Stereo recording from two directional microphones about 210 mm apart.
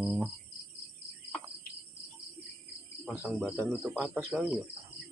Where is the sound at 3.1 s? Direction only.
5° right (ahead or behind).